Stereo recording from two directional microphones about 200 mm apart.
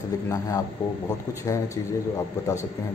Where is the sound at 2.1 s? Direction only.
15° left (ahead or behind).